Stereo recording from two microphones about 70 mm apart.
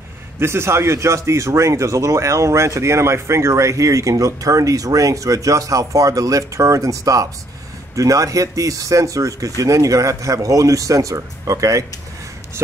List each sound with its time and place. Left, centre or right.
0.4 s speech: right